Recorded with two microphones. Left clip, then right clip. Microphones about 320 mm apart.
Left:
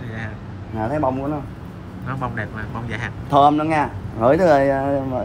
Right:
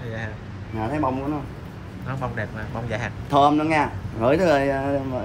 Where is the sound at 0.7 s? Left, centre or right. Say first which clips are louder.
Left 3 dB; centre.